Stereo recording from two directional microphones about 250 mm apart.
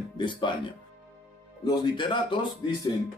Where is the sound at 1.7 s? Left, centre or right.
Centre.